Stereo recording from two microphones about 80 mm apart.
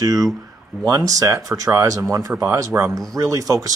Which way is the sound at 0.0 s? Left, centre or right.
Right.